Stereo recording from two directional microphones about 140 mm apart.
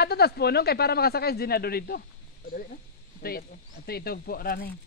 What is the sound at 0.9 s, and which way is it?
Speech, 90° left.